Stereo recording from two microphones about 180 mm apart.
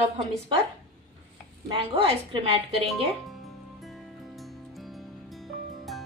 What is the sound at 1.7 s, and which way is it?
Speech, 30° right (ahead or behind).